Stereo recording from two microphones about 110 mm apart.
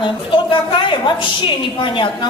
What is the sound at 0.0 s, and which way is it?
A woman's voice, 50° left (ahead or behind).